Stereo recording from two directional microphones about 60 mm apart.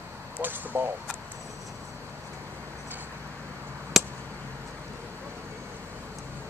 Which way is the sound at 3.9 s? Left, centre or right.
Centre.